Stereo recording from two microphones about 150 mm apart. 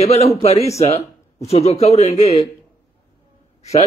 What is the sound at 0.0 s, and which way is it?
A man's voice, 45° left (ahead or behind).